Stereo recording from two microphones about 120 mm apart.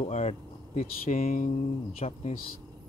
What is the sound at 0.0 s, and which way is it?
Speech, 65° left (ahead or behind).